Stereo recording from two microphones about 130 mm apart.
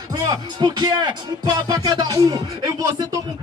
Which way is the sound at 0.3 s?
30° right (ahead or behind).